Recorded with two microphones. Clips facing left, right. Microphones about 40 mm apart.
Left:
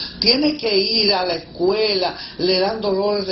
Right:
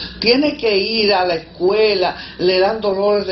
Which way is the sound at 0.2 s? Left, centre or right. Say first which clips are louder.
Right 4 dB; right.